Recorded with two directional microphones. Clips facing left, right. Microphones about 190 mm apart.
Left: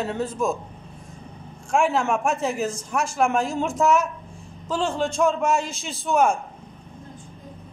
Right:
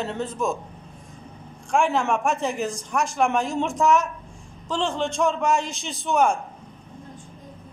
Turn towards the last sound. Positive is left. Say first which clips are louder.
# left 1 dB
turn(degrees=0)  # may be behind; listen again after turning